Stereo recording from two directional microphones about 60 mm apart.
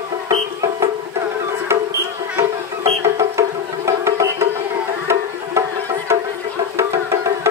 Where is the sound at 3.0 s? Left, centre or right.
Right.